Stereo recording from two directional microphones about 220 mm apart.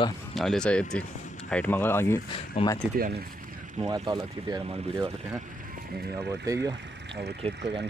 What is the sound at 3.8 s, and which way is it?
Speech, 15° right (ahead or behind).